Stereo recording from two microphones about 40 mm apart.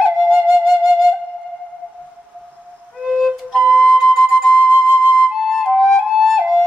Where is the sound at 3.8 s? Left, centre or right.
Centre.